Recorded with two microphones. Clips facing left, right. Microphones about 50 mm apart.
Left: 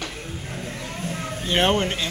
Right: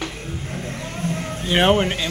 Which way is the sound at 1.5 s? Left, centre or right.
Centre.